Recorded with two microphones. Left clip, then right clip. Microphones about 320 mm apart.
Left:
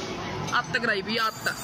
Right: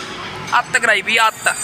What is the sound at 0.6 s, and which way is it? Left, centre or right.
Speech, right.